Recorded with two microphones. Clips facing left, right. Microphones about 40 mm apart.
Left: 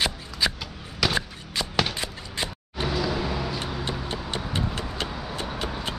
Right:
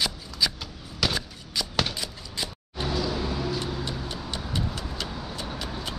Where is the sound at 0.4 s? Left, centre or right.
Left.